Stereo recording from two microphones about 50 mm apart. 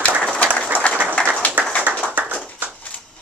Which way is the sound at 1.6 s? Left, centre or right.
Right.